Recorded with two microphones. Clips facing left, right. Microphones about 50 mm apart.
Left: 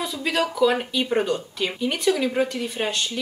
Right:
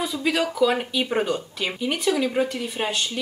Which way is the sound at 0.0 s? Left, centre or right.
Centre.